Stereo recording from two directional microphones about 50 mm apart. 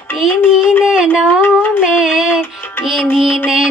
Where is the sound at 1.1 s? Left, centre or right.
Centre.